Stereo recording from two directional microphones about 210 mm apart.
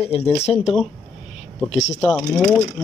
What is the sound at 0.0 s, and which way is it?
Speech, 30° left (ahead or behind).